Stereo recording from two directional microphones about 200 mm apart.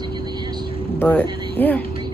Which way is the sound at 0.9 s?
10° left (ahead or behind).